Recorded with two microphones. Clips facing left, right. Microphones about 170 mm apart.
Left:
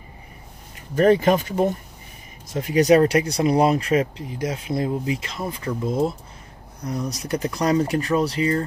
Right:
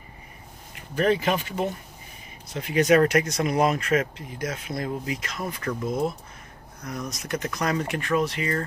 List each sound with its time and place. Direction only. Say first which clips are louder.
0.9 s speech: left 6 dB; 45° left (ahead or behind)